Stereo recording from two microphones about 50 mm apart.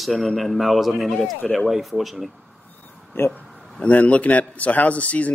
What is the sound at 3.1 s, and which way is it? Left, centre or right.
Speech, left.